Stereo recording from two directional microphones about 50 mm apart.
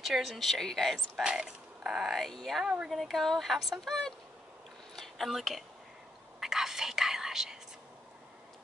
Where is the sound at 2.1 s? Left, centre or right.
Centre.